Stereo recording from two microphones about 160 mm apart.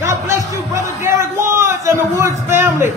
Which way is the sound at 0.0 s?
15° right (ahead or behind).